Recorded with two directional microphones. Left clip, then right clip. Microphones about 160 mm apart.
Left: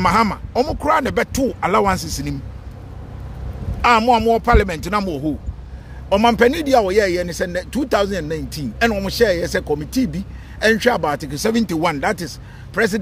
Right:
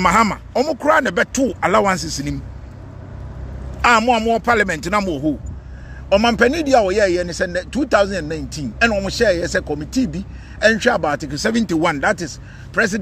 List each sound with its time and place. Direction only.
0.0 s speech: centre (ahead or behind)
4.0 s speech: 15° left (ahead or behind)
6.0 s speech: 20° left (ahead or behind)